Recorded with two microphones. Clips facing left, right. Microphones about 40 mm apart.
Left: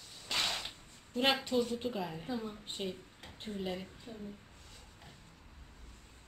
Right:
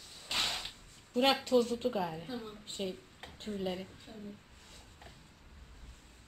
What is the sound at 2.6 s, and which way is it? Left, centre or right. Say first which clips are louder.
Speech: right 1 dB; left.